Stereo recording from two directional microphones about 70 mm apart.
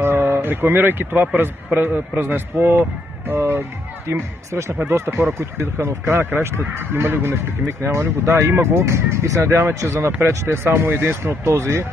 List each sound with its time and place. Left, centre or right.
0.0 s speech: right
9.4 s speech: right